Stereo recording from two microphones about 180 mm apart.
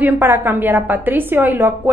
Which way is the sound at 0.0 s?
10° right (ahead or behind).